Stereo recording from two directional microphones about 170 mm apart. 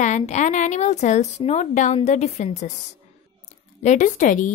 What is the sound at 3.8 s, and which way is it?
Speech, 45° left (ahead or behind).